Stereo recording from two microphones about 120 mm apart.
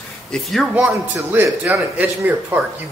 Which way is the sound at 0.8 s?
15° right (ahead or behind).